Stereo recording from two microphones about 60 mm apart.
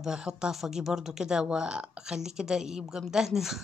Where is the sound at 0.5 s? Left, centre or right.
Centre.